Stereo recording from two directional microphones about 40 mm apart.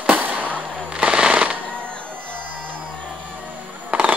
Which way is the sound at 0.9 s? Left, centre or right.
Right.